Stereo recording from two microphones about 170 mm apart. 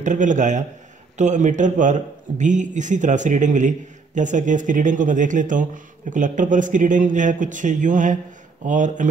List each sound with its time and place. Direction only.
0.0 s a man's voice: 45° right (ahead or behind)